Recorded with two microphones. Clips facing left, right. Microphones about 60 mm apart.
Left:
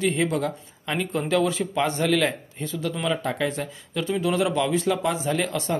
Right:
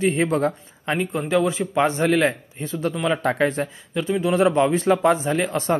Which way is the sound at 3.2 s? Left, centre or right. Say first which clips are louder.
Right 5 dB; right.